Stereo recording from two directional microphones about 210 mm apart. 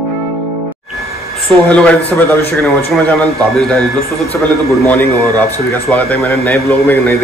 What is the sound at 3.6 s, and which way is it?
Speech, centre (ahead or behind).